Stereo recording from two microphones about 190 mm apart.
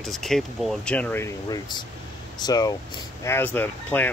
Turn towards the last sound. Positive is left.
turn(degrees=10)  # may be behind; listen again after turning